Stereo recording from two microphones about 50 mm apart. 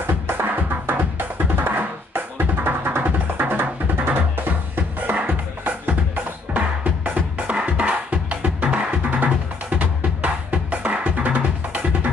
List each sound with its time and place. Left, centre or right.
0.0 s music: right